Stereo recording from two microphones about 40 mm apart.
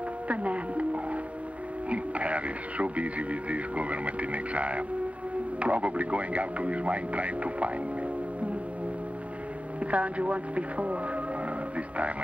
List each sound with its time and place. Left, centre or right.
0.3 s music: right
1.9 s speech: right
9.8 s speech: right